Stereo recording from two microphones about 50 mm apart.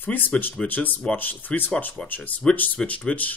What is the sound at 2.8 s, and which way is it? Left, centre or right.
Speech, left.